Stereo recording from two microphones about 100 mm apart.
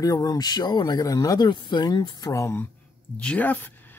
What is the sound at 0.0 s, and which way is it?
Speech, 35° left (ahead or behind).